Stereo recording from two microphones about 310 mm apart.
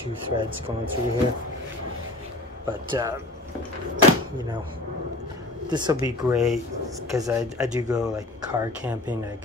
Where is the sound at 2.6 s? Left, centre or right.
Centre.